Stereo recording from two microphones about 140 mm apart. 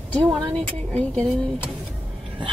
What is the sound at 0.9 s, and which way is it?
Speech, 10° left (ahead or behind).